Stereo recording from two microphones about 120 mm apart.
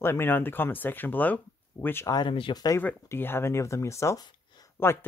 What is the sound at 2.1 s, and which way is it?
Speech, 45° left (ahead or behind).